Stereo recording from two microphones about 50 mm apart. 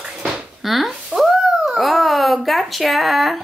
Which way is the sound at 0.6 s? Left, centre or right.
Centre.